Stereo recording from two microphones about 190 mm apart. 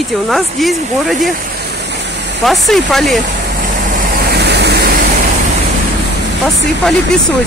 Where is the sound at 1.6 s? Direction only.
60° right (ahead or behind).